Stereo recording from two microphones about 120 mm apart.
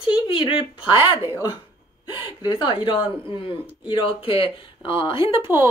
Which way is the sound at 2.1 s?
35° left (ahead or behind).